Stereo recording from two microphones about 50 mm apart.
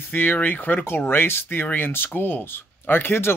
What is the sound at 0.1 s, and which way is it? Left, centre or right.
Speech, left.